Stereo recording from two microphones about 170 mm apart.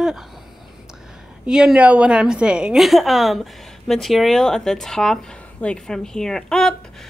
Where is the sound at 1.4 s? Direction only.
5° right (ahead or behind).